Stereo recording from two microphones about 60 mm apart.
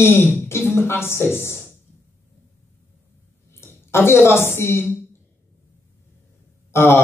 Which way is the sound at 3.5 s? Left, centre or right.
Left.